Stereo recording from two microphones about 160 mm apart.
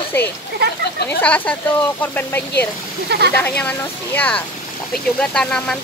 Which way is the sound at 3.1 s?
90° right.